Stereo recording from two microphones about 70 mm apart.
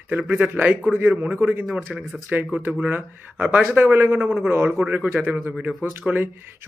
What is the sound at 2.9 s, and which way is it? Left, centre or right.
Speech, right.